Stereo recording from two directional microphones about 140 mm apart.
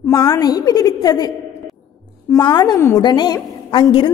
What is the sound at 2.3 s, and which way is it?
A woman's voice, 30° left (ahead or behind).